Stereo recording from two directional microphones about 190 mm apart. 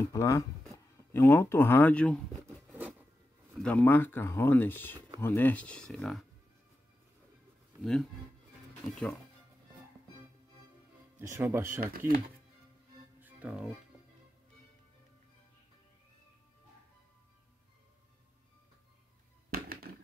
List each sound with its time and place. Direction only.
0.0 s speech: 15° left (ahead or behind)
2.4 s zipper: 10° right (ahead or behind)
3.5 s speech: 5° left (ahead or behind)
7.8 s speech: 5° left (ahead or behind)
11.1 s speech: 15° right (ahead or behind)
13.2 s music: 5° right (ahead or behind)
19.5 s music: 50° right (ahead or behind)